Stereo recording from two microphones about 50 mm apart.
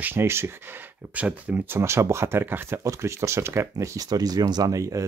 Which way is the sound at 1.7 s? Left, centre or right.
Right.